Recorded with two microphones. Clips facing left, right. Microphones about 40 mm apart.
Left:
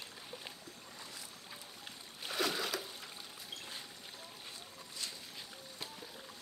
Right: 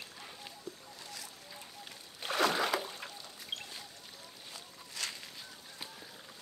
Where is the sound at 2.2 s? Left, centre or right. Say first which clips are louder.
Right 6 dB; right.